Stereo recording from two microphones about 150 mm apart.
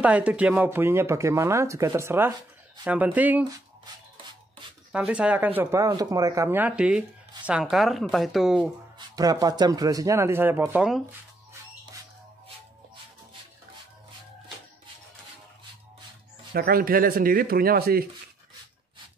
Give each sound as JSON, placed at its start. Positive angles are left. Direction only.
{"t": 0.0, "sound": "speech", "side_deg": -10}
{"t": 4.9, "sound": "speech", "side_deg": -10}
{"t": 8.9, "sound": "speech", "side_deg": -25}
{"t": 16.5, "sound": "speech", "side_deg": -85}